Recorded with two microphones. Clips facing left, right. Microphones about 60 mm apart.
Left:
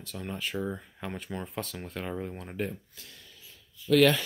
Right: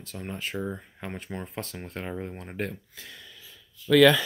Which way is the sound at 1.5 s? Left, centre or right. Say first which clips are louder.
Even; right.